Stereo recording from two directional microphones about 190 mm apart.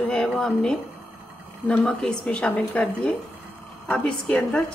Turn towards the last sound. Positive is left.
turn(degrees=5)  # may be behind; listen again after turning